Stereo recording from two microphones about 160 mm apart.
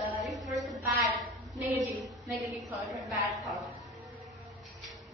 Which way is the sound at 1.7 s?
20° right (ahead or behind).